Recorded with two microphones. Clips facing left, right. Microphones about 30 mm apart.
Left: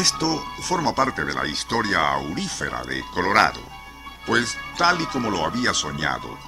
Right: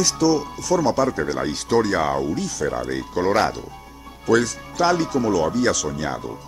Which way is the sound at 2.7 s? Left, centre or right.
Left.